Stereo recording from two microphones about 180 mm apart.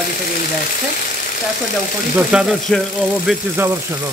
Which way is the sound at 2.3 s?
5° right (ahead or behind).